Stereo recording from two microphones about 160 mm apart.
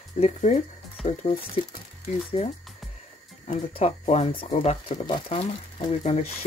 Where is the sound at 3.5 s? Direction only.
40° left (ahead or behind).